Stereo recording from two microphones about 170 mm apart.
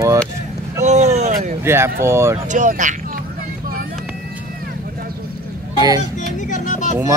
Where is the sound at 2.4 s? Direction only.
45° right (ahead or behind).